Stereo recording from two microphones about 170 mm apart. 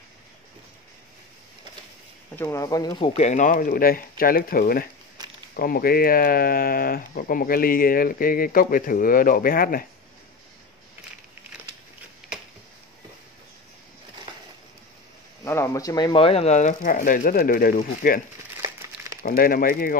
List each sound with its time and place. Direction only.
2.3 s speech: 15° left (ahead or behind)
3.1 s speech: 45° left (ahead or behind)
15.4 s speech: 15° left (ahead or behind); by 18.2 s 55° left (ahead or behind)
18.6 s a sound: 20° right (ahead or behind)
19.2 s speech: 60° left (ahead or behind)